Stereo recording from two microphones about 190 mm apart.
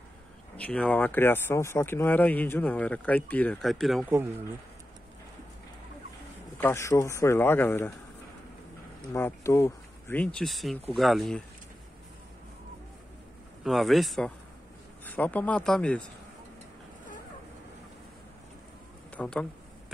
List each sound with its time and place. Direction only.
0.6 s speech: 5° left (ahead or behind)
6.6 s speech: 15° left (ahead or behind)
9.1 s speech: 15° left (ahead or behind)
13.7 s speech: centre (ahead or behind)
19.1 s speech: 5° left (ahead or behind)